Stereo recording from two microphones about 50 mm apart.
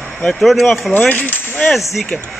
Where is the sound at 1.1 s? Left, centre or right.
Left.